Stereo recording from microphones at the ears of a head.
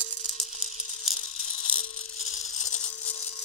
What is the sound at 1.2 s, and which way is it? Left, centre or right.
Rattle, left.